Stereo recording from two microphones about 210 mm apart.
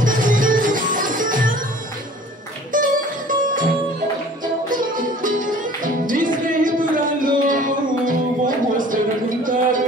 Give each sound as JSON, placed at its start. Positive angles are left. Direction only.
{"t": 0.0, "sound": "music", "side_deg": -40}
{"t": 2.7, "sound": "music", "side_deg": -40}
{"t": 4.6, "sound": "music", "side_deg": -40}